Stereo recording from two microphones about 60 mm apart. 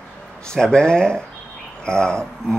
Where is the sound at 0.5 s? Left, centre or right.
Centre.